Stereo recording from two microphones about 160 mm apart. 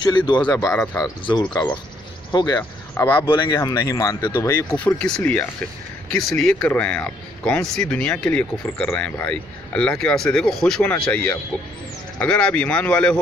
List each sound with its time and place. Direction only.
0.0 s speech: 30° left (ahead or behind)
2.9 s speech: 10° left (ahead or behind)
3.3 s speech: 30° left (ahead or behind)
4.6 s speech: 10° left (ahead or behind)